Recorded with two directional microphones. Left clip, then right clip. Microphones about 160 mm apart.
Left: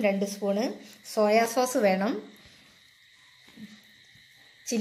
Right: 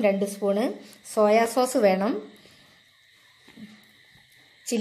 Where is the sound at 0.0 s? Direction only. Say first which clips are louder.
Right 4 dB; 20° right (ahead or behind).